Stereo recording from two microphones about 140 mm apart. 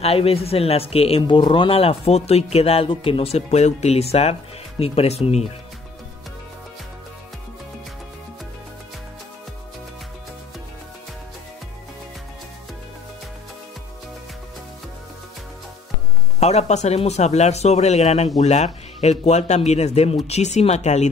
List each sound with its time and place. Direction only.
0.0 s speech: 45° left (ahead or behind)
16.3 s speech: 50° left (ahead or behind)